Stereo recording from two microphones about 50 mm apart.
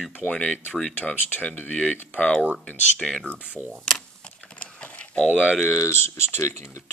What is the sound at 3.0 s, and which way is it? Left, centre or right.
Speech, centre.